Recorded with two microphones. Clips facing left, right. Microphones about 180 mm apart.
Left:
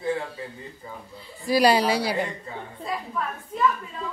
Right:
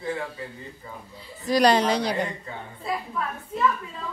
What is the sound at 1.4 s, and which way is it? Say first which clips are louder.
Speech: even; 5° left (ahead or behind).